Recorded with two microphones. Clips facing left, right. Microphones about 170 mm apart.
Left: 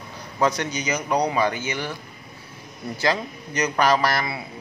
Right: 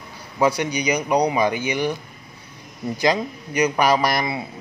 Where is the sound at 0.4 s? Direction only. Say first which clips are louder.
Right 3 dB; 10° right (ahead or behind).